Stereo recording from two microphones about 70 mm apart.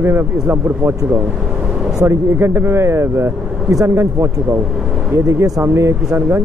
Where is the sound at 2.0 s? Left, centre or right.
Right.